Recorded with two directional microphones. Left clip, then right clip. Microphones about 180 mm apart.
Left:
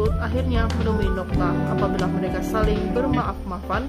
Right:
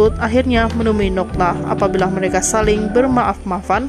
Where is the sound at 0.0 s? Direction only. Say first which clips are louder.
Right 11 dB; 35° right (ahead or behind).